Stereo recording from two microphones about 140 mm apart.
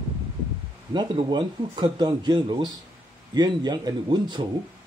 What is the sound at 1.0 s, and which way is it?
Speech, 35° right (ahead or behind).